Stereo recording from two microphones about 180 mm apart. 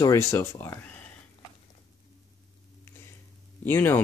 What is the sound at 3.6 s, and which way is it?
Speech, 10° left (ahead or behind).